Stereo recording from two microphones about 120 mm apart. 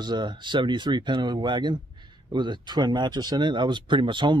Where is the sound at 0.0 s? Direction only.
40° right (ahead or behind).